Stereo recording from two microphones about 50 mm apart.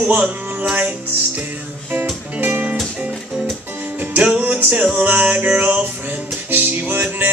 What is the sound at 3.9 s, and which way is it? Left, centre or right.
Music, right.